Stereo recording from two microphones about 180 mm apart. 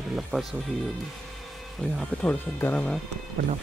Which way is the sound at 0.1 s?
Centre (ahead or behind).